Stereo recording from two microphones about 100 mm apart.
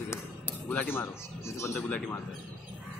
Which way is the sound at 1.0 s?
30° left (ahead or behind).